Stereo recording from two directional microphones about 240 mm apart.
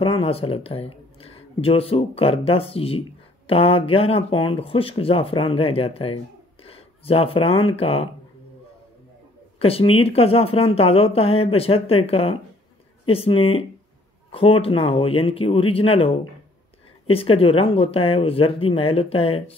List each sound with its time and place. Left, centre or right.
0.0 s speech: left
9.6 s speech: left